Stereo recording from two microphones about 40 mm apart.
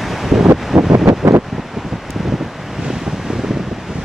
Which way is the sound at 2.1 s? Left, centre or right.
Centre.